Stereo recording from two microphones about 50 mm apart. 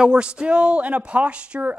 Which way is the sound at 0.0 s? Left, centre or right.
Centre.